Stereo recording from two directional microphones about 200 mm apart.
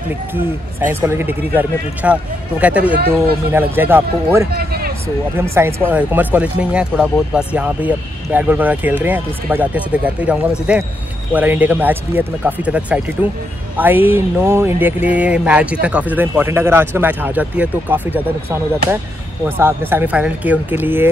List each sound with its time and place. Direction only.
1.0 s speech: 10° right (ahead or behind)
4.5 s speech: 50° right (ahead or behind)
5.3 s speech: 10° right (ahead or behind)